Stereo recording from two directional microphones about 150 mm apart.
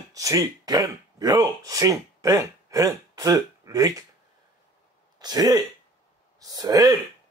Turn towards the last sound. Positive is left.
turn(degrees=-25)  # may be behind; listen again after turning